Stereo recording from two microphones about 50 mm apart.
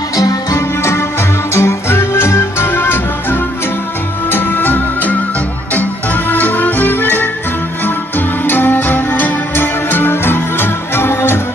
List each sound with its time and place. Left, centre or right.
0.6 s music: left
8.5 s music: left